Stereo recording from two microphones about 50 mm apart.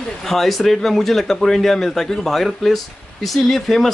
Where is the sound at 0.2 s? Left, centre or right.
Centre.